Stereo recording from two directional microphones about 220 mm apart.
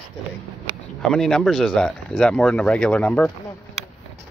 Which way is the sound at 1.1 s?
Centre (ahead or behind).